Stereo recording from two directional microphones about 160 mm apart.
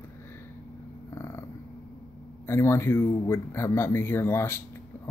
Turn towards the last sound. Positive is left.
turn(degrees=15)  # may be behind; listen again after turning